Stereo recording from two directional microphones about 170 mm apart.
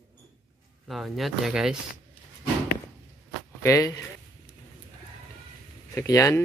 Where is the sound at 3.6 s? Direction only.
20° left (ahead or behind).